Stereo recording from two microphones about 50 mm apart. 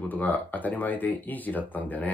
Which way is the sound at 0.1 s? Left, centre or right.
Left.